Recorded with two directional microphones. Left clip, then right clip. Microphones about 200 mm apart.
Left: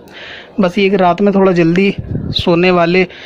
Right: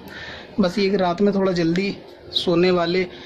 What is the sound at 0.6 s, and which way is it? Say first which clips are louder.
Speech: left 8 dB; 35° left (ahead or behind).